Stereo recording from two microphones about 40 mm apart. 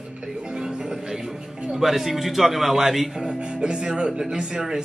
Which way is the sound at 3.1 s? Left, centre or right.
Centre.